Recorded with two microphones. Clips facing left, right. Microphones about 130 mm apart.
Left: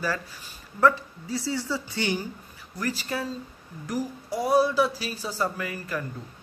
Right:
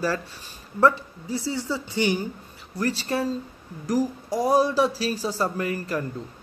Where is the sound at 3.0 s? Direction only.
35° right (ahead or behind).